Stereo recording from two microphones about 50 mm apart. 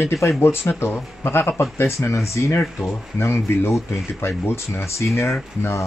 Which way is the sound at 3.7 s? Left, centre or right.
Left.